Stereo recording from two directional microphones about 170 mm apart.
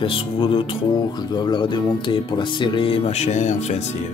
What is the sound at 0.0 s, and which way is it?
Speech, 30° left (ahead or behind).